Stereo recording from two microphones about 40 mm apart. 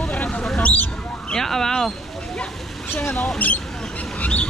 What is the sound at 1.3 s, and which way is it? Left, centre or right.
Speech, centre.